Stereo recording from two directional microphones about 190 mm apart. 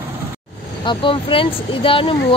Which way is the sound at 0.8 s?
25° left (ahead or behind).